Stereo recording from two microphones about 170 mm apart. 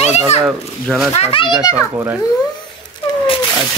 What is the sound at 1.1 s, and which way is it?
Speech, 35° left (ahead or behind).